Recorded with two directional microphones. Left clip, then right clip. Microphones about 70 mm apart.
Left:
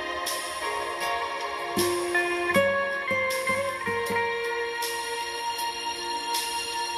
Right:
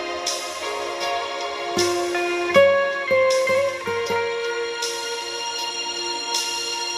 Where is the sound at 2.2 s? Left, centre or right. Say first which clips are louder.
Right 7 dB; right.